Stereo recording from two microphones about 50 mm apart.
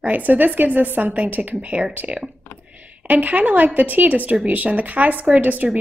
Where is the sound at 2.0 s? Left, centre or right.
Right.